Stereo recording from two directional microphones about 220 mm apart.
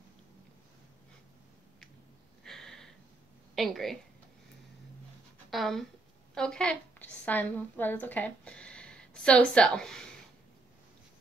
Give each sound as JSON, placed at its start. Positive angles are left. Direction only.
{"t": 2.4, "sound": "a sound", "side_deg": 0}
{"t": 3.5, "sound": "speech", "side_deg": 0}
{"t": 5.5, "sound": "a woman's voice", "side_deg": 0}